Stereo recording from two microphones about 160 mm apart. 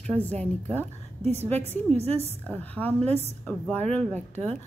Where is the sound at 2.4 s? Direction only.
10° left (ahead or behind).